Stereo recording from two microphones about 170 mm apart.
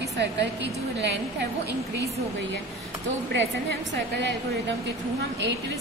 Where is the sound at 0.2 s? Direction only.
90° right.